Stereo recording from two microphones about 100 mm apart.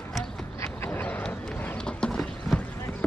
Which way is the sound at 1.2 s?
15° left (ahead or behind).